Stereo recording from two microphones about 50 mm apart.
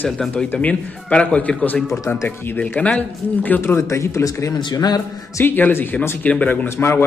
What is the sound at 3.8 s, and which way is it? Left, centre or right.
Speech, left.